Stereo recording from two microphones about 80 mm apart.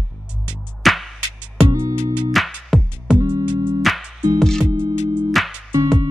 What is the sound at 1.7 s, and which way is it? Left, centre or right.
Music, right.